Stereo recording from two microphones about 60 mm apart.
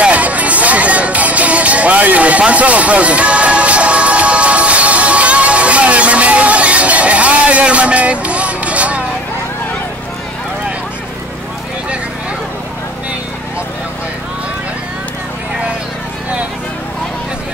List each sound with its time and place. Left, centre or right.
0.0 s music: right